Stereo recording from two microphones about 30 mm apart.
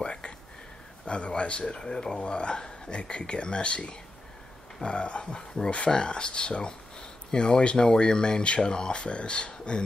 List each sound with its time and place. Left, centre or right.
0.0 s a sound: left
1.0 s speech: left
1.8 s speech: left
2.1 s speech: left